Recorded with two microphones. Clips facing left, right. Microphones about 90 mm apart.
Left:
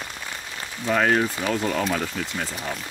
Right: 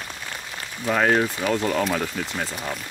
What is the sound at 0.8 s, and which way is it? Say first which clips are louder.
Speech: right 1 dB; 5° right (ahead or behind).